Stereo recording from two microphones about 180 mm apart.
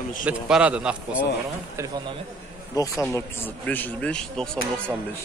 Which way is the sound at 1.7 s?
15° right (ahead or behind).